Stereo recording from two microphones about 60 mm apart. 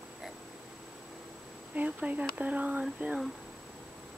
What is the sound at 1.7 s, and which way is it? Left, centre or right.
Speech, right.